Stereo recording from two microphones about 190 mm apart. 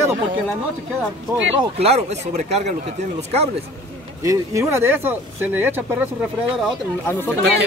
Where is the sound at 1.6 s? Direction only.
30° right (ahead or behind).